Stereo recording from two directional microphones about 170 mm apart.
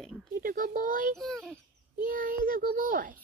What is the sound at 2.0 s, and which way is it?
Speech, 50° right (ahead or behind).